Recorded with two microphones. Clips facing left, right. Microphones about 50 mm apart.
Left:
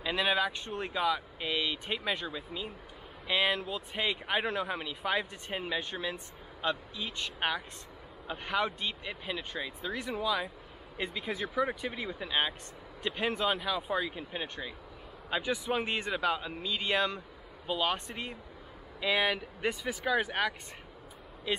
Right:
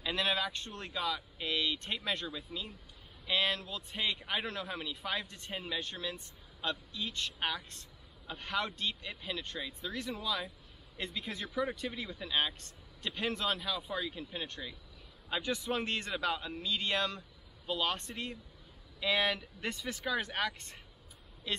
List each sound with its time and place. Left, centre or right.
0.0 s a man's voice: centre